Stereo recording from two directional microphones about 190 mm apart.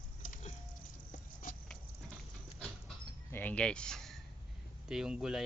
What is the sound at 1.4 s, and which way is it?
Patter, 45° left (ahead or behind).